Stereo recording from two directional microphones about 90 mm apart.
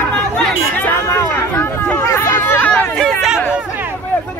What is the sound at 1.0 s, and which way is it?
Chatter, 35° left (ahead or behind).